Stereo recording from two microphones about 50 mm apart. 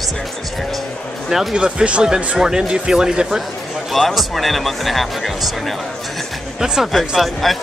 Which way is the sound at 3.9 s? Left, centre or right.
Centre.